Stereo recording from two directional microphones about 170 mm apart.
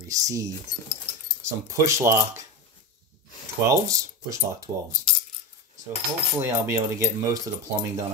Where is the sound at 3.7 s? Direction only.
20° right (ahead or behind).